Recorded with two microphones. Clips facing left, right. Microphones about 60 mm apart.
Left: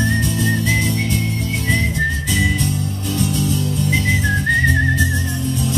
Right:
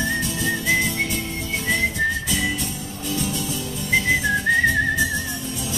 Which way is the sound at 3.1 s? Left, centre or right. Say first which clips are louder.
Left 6 dB; centre.